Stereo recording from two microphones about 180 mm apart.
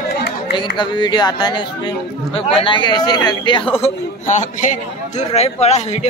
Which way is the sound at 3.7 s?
40° left (ahead or behind).